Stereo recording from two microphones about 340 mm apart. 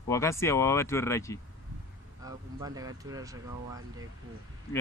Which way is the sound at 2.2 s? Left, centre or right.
Centre.